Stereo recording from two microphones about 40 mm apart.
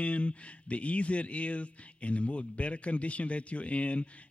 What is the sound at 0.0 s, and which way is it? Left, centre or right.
Speech, left.